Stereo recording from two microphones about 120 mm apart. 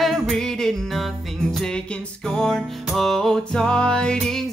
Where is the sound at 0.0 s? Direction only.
Centre (ahead or behind).